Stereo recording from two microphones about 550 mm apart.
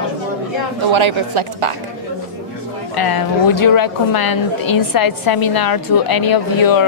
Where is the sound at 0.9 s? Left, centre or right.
Right.